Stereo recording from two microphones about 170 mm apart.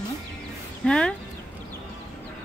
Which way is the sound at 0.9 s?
5° left (ahead or behind).